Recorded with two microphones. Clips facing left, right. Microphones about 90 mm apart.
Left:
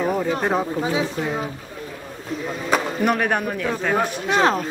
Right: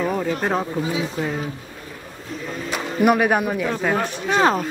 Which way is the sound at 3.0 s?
5° right (ahead or behind).